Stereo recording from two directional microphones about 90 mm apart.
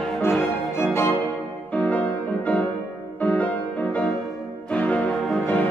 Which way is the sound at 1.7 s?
15° left (ahead or behind).